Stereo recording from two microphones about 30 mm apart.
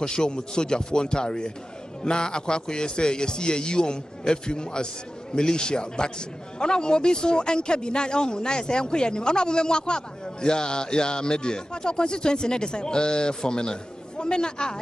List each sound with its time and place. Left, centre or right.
0.0 s a man's voice: left